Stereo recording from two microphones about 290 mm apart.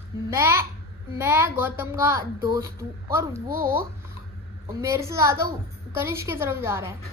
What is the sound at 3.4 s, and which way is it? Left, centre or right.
Speech, right.